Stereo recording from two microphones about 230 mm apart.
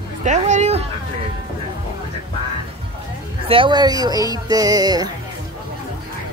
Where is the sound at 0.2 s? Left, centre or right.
Right.